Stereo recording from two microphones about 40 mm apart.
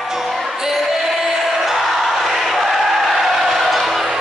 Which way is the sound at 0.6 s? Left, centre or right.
Centre.